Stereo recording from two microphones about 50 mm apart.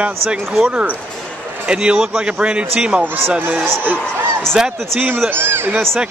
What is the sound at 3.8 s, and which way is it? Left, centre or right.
Speech, right.